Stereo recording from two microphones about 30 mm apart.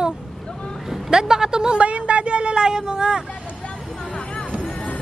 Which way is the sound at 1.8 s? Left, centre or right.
Right.